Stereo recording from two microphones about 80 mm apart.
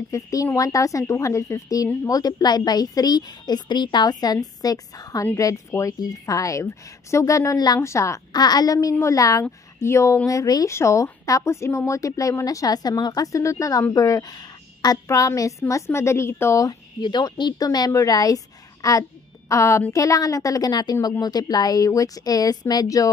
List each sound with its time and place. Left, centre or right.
0.1 s a woman's voice: left
7.8 s speech: left
8.3 s a woman's voice: left
10.7 s speech: left
15.0 s speech: left
16.6 s speech: left